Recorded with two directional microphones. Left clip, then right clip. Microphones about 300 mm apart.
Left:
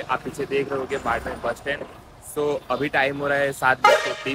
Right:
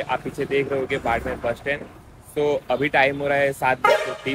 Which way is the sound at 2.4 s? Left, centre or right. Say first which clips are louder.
Right 3 dB; centre.